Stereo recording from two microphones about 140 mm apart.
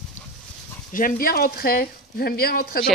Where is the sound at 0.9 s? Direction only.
80° left.